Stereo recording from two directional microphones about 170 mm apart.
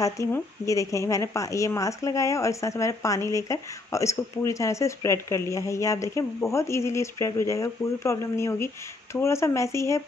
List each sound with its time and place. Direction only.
0.0 s a woman's voice: 20° left (ahead or behind)